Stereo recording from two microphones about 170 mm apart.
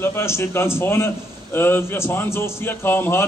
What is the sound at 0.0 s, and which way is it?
A man's voice, 15° left (ahead or behind).